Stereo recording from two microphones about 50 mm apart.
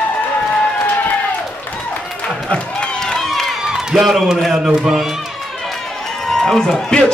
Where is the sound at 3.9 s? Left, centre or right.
Centre.